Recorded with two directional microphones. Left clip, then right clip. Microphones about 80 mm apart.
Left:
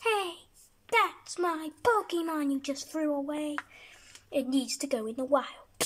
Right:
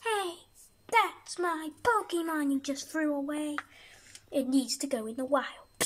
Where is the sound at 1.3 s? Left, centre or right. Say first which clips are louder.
Left 1 dB; left.